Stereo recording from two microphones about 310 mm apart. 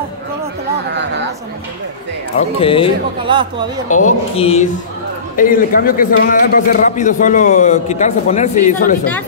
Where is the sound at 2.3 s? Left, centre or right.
Centre.